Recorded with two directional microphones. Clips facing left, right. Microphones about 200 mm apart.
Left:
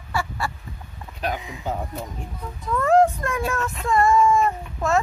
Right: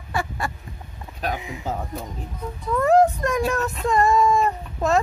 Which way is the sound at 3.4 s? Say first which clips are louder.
Right 3 dB; 40° right (ahead or behind).